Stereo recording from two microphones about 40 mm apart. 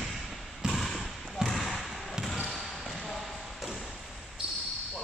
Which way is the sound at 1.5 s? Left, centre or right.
Centre.